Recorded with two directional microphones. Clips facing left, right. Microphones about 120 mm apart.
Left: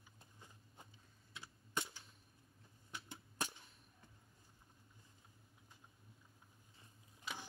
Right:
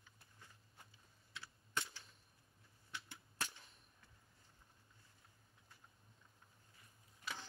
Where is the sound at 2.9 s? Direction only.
20° left (ahead or behind).